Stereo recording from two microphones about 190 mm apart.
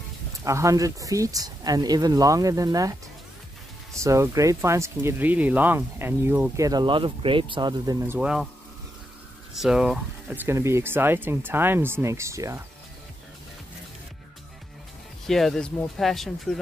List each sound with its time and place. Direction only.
0.4 s speech: 15° right (ahead or behind)
4.0 s speech: 15° right (ahead or behind)
8.2 s speech: 5° right (ahead or behind)
9.5 s speech: centre (ahead or behind)
15.2 s speech: centre (ahead or behind)